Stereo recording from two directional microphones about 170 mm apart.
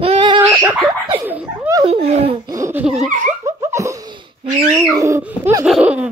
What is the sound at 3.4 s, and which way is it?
Laughter, 20° right (ahead or behind).